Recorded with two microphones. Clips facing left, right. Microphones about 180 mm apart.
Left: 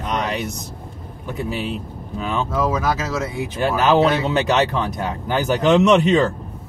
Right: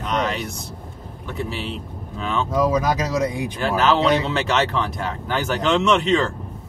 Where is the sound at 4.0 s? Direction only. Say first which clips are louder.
Left 2 dB; 15° left (ahead or behind).